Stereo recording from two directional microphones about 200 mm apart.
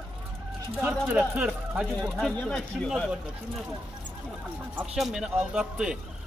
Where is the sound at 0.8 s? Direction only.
5° right (ahead or behind).